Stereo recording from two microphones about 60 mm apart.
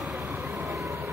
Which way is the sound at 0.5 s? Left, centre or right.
Right.